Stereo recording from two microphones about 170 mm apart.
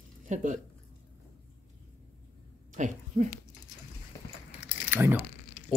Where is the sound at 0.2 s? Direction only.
45° right (ahead or behind).